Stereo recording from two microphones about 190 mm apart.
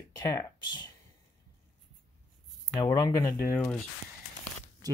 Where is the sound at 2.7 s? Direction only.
20° left (ahead or behind).